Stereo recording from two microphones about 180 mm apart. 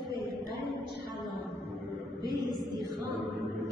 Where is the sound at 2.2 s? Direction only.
25° right (ahead or behind).